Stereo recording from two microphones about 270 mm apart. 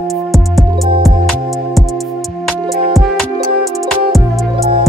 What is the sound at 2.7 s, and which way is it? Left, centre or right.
Music, centre.